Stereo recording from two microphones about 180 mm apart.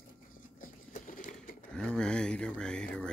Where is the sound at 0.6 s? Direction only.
50° left (ahead or behind).